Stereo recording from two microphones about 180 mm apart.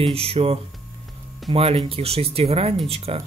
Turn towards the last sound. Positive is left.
turn(degrees=-35)  # may be behind; listen again after turning